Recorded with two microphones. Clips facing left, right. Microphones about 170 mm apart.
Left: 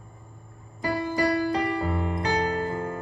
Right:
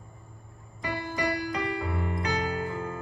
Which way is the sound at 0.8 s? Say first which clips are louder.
Left 6 dB; 30° left (ahead or behind).